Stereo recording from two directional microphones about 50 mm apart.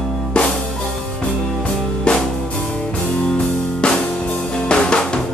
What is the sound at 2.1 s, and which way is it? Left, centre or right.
Music, left.